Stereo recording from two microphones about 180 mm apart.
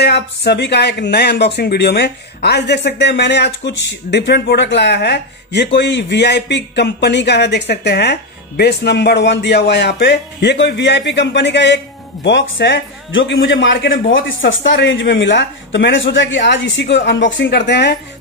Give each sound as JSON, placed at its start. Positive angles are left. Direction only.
{"t": 0.0, "sound": "speech", "side_deg": 65}